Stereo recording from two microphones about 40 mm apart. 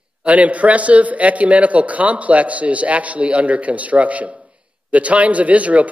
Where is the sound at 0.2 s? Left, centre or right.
Right.